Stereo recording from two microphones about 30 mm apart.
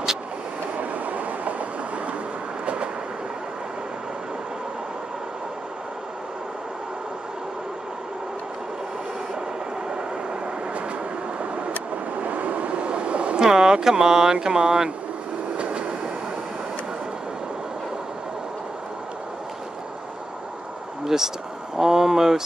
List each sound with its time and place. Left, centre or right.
0.7 s vehicle: right
2.6 s train: right
11.6 s vehicle: right
13.4 s speech: right
15.5 s train: right
21.0 s a sound: centre
21.7 s speech: centre